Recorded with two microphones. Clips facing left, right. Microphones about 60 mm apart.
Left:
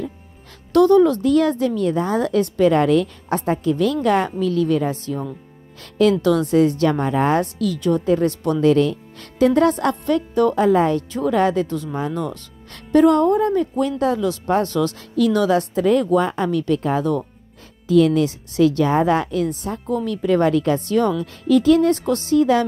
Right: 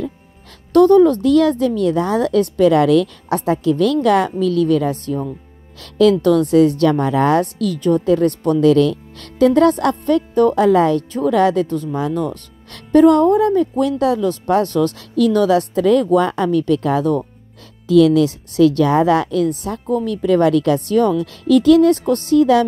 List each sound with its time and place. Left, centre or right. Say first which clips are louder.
0.7 s speech: right 3 dB; right
1.2 s a woman's voice: right 3 dB; right
2.7 s a woman's voice: right 3 dB; right
6.2 s a woman's voice: right 4 dB; right
10.5 s a woman's voice: right 3 dB; right
16.2 s speech: right 3 dB; right
16.5 s a woman's voice: right 4 dB; right
20.3 s a woman's voice: right 4 dB; right